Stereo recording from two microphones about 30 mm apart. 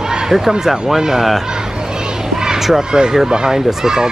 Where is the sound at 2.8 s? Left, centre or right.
Right.